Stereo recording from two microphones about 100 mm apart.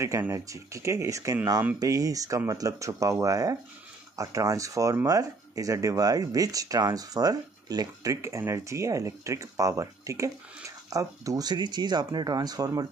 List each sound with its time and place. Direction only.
0.0 s speech: 30° right (ahead or behind)